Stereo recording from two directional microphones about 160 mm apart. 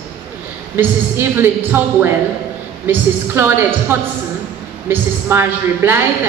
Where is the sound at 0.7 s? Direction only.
15° right (ahead or behind).